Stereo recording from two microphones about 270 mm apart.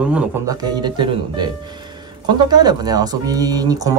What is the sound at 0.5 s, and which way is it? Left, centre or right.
Speech, centre.